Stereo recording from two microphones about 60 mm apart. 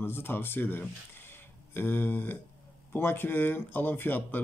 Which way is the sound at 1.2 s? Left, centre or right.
Left.